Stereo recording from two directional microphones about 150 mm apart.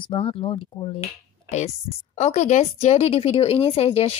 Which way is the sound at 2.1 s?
50° left (ahead or behind).